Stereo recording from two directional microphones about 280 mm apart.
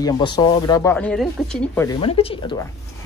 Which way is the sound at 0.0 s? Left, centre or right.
Centre.